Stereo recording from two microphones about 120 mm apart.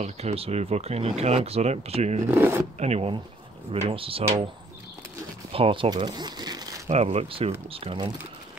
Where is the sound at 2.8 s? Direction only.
65° right (ahead or behind).